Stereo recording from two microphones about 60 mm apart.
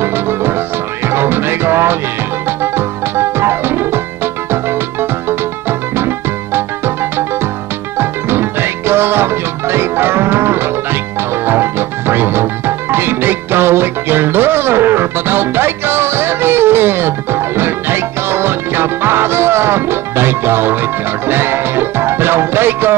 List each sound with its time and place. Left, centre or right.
0.0 s music: right
8.0 s music: right